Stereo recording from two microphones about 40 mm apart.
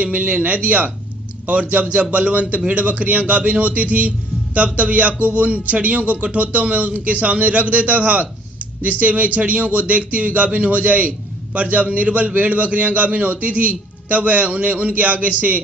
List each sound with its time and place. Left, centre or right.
0.0 s speech: right